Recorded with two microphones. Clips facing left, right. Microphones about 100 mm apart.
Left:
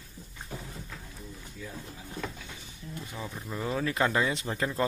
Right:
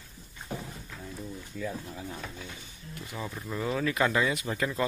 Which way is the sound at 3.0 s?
15° right (ahead or behind).